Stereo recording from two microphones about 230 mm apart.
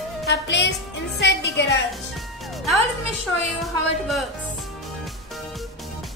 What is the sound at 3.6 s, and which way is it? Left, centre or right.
Speech, centre.